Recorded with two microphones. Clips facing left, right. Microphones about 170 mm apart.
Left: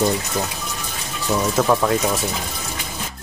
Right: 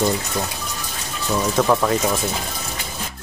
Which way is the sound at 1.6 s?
5° left (ahead or behind).